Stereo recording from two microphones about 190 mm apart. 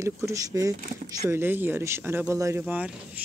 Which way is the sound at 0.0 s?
15° right (ahead or behind).